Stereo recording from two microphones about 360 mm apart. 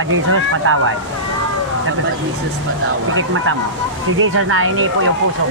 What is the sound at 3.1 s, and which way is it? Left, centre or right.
Speech, right.